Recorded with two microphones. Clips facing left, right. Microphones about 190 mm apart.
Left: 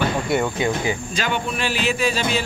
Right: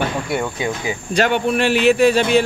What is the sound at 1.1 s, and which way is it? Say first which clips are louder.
Speech: right 8 dB; 65° right (ahead or behind).